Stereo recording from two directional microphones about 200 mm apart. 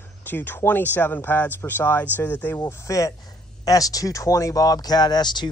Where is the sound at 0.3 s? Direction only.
10° left (ahead or behind).